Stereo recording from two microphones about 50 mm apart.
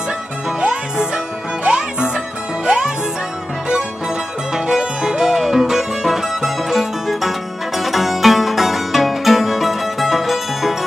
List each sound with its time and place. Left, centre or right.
0.5 s music: centre
4.6 s music: centre